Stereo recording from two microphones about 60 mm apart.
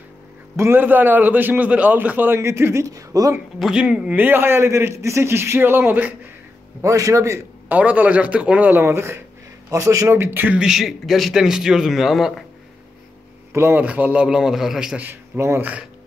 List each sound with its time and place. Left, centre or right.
0.6 s a man's voice: right
2.3 s speech: right
2.9 s speech: right
3.7 s a man's voice: centre; by 6.1 s right
6.8 s a man's voice: right
7.6 s a man's voice: right
8.8 s speech: right
9.7 s a man's voice: right
10.1 s a man's voice: right
10.6 s speech: centre
13.5 s speech: right
13.7 s a man's voice: right; by 15.0 s centre
15.3 s speech: right